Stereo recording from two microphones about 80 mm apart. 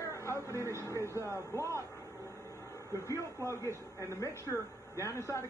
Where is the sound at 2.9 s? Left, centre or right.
Left.